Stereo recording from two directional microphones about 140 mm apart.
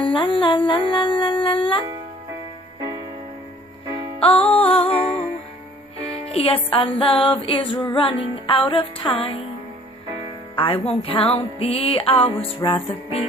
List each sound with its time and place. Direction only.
0.0 s humming: 40° left (ahead or behind)
4.2 s music: 45° left (ahead or behind)
10.5 s music: 40° left (ahead or behind)